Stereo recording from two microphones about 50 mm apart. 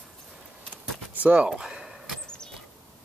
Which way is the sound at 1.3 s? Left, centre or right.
Centre.